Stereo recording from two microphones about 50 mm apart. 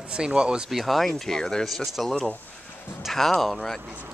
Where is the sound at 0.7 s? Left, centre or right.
Centre.